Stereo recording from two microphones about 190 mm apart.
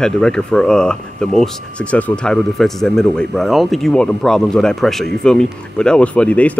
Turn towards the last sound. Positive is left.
turn(degrees=5)  # may be behind; listen again after turning